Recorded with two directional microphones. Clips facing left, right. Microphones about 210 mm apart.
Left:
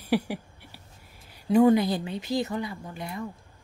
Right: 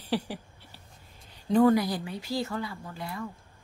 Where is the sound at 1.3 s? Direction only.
10° left (ahead or behind).